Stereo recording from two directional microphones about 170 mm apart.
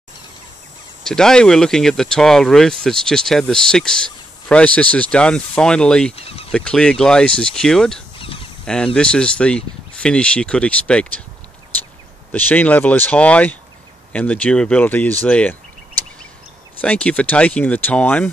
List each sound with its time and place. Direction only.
1.0 s speech: 5° left (ahead or behind)
6.1 s speech: 35° left (ahead or behind)
6.5 s speech: 5° left (ahead or behind)
8.2 s a sound: 30° left (ahead or behind)
8.6 s speech: 5° left (ahead or behind)
12.3 s speech: 10° left (ahead or behind)
16.8 s speech: 10° left (ahead or behind)